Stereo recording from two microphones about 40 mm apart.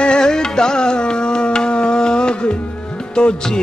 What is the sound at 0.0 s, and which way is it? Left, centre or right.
Music, left.